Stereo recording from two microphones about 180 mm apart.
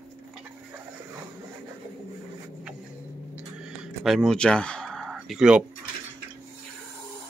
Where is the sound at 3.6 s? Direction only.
Centre (ahead or behind).